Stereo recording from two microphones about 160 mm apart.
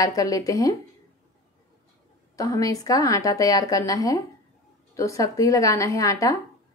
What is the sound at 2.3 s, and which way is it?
A woman's voice, 20° left (ahead or behind).